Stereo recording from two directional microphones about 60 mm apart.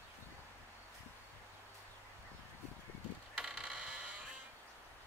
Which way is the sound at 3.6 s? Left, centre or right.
Centre.